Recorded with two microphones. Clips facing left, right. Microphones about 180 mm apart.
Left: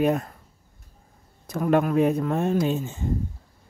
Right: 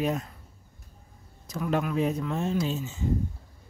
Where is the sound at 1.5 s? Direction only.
55° left (ahead or behind).